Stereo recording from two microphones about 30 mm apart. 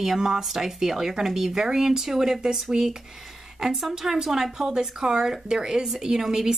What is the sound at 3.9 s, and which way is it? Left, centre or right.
Speech, centre.